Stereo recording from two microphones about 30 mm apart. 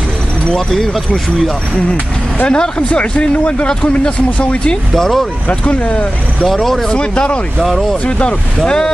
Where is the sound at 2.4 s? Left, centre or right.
Left.